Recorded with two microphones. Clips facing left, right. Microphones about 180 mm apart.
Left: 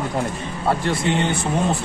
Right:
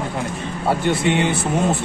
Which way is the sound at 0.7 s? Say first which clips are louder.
Right 2 dB; centre (ahead or behind).